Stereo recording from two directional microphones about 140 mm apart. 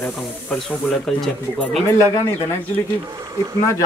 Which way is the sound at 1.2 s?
Centre (ahead or behind).